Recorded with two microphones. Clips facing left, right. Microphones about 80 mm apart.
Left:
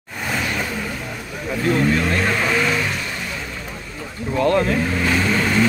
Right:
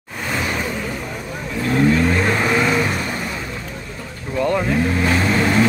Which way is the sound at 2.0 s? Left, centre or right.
Centre.